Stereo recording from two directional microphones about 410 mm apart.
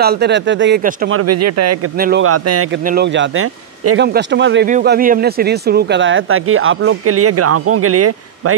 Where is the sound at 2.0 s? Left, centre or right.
Right.